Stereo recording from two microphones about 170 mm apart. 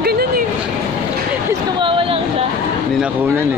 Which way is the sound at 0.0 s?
65° right (ahead or behind).